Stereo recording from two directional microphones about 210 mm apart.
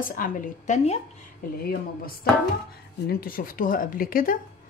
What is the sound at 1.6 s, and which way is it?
Speech, 45° left (ahead or behind).